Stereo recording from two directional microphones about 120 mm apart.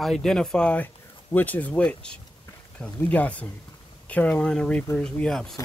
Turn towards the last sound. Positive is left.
turn(degrees=5)  # may be behind; listen again after turning